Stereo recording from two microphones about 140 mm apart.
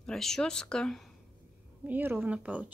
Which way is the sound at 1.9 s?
15° right (ahead or behind).